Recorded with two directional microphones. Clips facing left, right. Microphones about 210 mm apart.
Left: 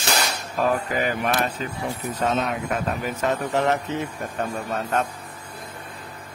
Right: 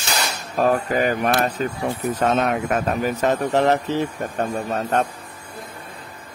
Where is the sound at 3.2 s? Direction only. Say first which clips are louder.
Right 3 dB; 40° right (ahead or behind).